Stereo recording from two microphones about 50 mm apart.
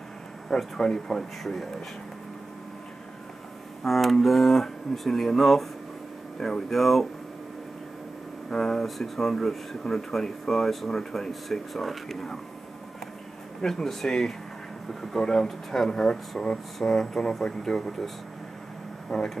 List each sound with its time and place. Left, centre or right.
0.5 s speech: centre
3.8 s speech: centre
8.5 s speech: centre
13.6 s speech: centre